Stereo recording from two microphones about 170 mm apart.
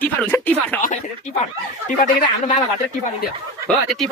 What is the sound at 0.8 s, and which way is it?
Speech, 45° left (ahead or behind).